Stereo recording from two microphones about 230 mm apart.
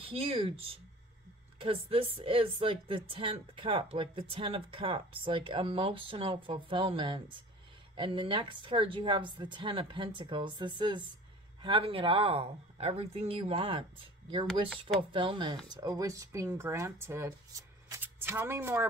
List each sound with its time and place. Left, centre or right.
0.0 s speech: right